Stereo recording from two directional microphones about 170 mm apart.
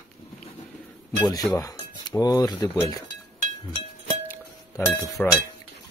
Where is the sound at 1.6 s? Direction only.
20° left (ahead or behind).